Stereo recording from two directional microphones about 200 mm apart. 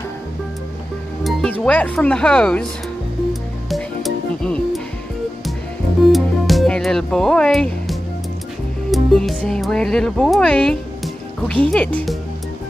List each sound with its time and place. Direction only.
1.2 s speech: 5° left (ahead or behind)
3.7 s music: centre (ahead or behind)
6.1 s speech: centre (ahead or behind)